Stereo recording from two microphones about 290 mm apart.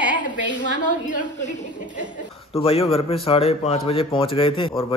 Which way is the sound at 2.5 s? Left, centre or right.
Centre.